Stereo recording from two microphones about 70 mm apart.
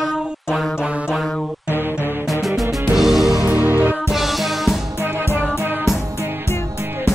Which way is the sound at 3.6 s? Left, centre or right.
Right.